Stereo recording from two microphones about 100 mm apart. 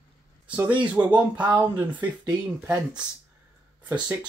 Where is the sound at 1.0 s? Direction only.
25° right (ahead or behind).